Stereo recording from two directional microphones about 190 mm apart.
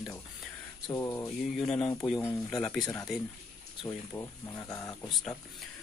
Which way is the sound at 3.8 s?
15° left (ahead or behind).